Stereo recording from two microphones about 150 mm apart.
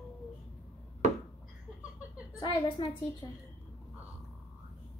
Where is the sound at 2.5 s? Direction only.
30° left (ahead or behind).